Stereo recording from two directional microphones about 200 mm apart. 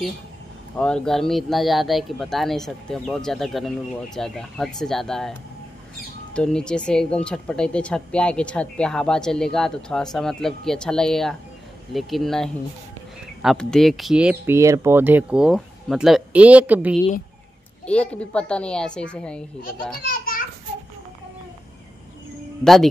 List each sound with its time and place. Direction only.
0.7 s a woman's voice: 5° left (ahead or behind)
6.3 s a woman's voice: 5° left (ahead or behind)
17.8 s a woman's voice: 5° left (ahead or behind)
20.0 s children playing: 45° left (ahead or behind)
22.6 s speech: centre (ahead or behind)